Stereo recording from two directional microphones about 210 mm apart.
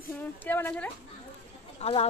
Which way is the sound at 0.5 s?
10° left (ahead or behind).